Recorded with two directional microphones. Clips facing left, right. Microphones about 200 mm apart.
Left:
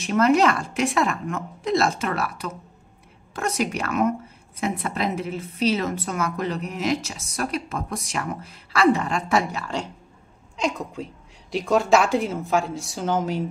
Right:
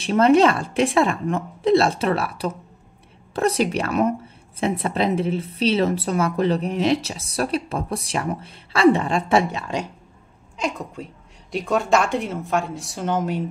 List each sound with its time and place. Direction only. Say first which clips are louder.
0.0 s a woman's voice: right 3 dB; 30° right (ahead or behind)
10.6 s a woman's voice: left 1 dB; centre (ahead or behind)